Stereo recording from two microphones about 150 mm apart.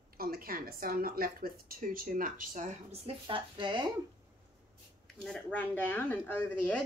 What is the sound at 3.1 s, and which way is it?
Speech, 35° right (ahead or behind).